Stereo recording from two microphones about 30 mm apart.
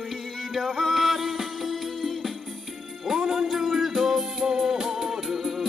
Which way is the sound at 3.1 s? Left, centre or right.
Centre.